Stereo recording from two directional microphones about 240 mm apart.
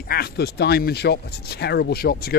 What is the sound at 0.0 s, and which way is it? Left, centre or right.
Speech, left.